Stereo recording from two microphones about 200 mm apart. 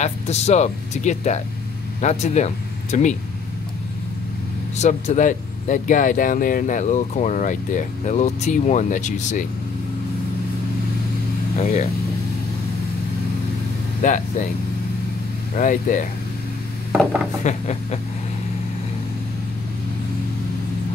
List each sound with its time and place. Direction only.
0.0 s speech: 35° left (ahead or behind)
4.7 s speech: 35° left (ahead or behind)
11.5 s speech: 35° left (ahead or behind)
14.0 s speech: 40° left (ahead or behind)
15.5 s speech: 40° left (ahead or behind)
17.4 s speech: 35° left (ahead or behind)